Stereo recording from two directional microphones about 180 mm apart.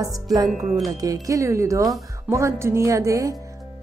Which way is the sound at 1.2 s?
15° right (ahead or behind).